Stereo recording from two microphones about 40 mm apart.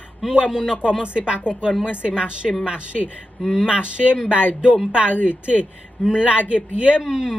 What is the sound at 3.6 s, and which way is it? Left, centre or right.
Speech, right.